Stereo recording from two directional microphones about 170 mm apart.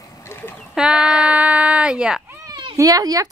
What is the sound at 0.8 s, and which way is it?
Speech, 5° right (ahead or behind).